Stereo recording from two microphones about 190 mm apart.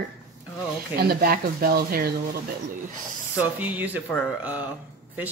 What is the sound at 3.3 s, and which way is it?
Speech, 10° right (ahead or behind).